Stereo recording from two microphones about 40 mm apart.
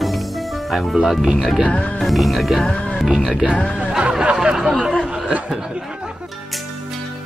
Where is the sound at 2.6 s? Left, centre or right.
Left.